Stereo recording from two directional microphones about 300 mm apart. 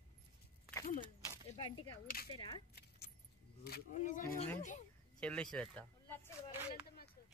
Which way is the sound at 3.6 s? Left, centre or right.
Left.